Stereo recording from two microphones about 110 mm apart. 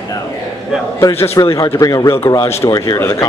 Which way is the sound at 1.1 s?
25° left (ahead or behind).